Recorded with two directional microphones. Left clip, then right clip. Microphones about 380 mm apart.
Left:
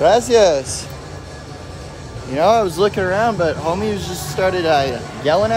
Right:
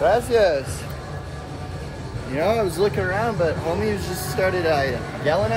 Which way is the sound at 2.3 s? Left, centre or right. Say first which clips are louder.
Left 8 dB; centre.